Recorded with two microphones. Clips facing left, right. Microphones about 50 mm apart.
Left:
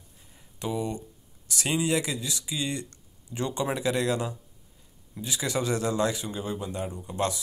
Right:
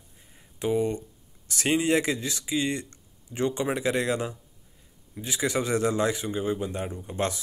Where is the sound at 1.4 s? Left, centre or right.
Right.